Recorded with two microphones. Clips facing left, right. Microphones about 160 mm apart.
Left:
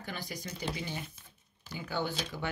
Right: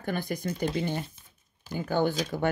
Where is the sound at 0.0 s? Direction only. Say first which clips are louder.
Right 10 dB; 55° right (ahead or behind).